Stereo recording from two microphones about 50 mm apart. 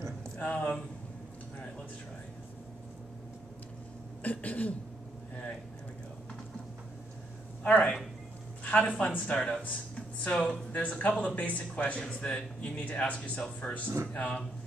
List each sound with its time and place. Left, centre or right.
0.4 s speech: left
4.2 s speech: left
7.6 s speech: left
10.8 s speech: left